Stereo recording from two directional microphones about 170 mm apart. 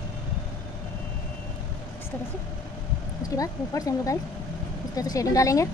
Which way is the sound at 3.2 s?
20° left (ahead or behind).